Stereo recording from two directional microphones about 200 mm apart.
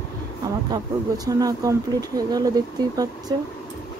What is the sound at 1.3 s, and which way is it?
Speech, 15° right (ahead or behind).